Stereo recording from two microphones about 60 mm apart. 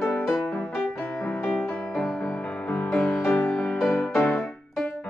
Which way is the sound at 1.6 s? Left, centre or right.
Centre.